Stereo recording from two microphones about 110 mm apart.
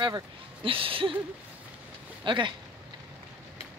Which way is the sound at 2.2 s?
45° right (ahead or behind).